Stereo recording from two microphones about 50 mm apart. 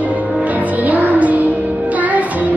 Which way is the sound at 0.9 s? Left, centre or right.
Right.